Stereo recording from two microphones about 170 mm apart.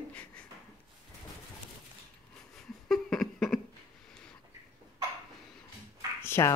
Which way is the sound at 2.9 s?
Centre (ahead or behind).